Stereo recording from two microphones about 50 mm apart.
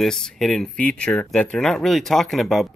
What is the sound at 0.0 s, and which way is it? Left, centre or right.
Speech, centre.